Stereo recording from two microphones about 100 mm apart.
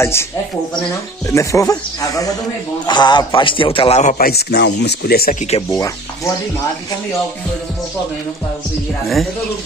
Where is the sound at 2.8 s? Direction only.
45° left (ahead or behind); by 4.0 s 75° left (ahead or behind).